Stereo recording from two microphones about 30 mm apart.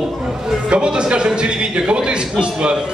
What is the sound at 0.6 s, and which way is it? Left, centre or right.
A man's voice, right.